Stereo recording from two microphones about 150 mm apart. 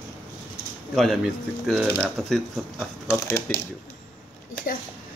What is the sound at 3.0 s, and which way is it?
Speech, 15° left (ahead or behind).